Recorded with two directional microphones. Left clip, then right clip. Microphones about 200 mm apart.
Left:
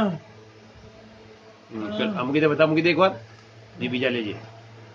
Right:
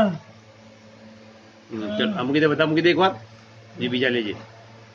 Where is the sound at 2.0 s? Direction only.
5° right (ahead or behind).